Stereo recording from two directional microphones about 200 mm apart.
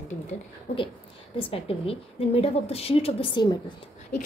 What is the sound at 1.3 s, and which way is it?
A woman's voice, 30° left (ahead or behind).